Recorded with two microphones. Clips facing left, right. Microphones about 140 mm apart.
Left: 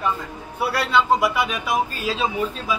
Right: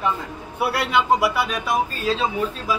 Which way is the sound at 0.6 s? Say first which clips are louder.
Even; 20° right (ahead or behind).